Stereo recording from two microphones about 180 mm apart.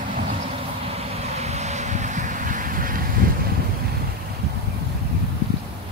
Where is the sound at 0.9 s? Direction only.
35° right (ahead or behind); by 3.1 s 50° right (ahead or behind).